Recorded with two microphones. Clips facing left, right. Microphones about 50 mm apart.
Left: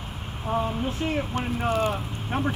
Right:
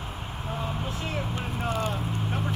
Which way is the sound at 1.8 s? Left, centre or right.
Left.